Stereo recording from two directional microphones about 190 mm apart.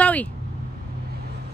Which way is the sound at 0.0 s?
10° left (ahead or behind).